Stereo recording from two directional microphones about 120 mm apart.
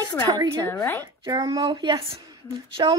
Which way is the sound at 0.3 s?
30° right (ahead or behind).